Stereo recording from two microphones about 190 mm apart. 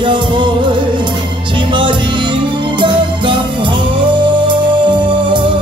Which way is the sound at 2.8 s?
25° right (ahead or behind).